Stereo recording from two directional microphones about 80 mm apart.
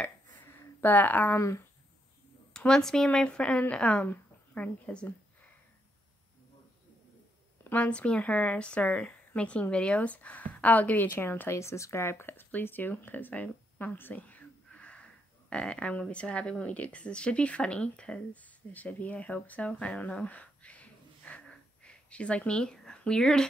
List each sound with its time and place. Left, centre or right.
0.7 s speech: left
2.5 s a woman's voice: centre
7.7 s a woman's voice: centre